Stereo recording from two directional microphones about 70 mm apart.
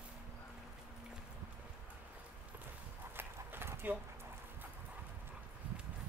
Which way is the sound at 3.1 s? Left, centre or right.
Right.